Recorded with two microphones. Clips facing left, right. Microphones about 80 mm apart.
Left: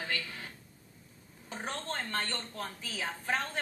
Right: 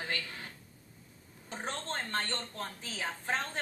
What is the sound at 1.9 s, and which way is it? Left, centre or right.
Speech, right.